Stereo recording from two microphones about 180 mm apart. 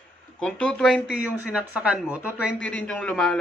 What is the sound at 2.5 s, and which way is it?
Speech, 5° left (ahead or behind).